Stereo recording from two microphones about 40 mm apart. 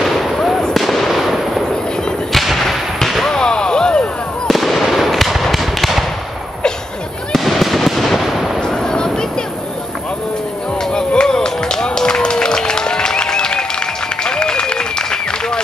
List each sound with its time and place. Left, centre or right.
0.0 s fireworks: centre
2.3 s a sound: centre
3.3 s a sound: centre
4.5 s fireworks: centre
7.3 s fireworks: centre
8.5 s artillery fire: centre
10.8 s music: centre
14.2 s applause: centre